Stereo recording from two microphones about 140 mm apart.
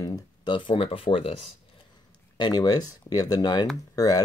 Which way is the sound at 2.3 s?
30° left (ahead or behind).